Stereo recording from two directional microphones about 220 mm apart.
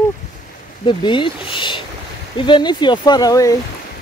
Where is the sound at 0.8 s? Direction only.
20° left (ahead or behind).